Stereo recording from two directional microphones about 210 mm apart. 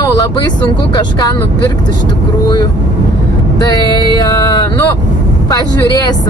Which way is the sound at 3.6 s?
15° left (ahead or behind).